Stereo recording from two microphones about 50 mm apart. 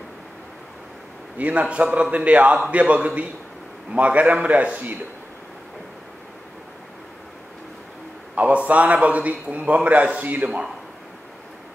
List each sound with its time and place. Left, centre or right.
1.4 s a man's voice: right
8.4 s a man's voice: right